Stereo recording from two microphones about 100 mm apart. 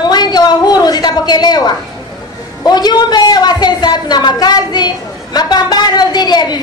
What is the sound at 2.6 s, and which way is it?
A woman's voice, 45° left (ahead or behind).